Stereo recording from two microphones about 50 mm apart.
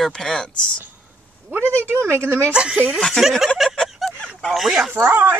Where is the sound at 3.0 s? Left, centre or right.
Centre.